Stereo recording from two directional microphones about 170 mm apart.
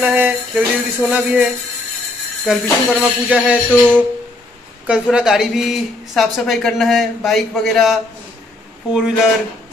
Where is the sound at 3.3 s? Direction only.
10° right (ahead or behind).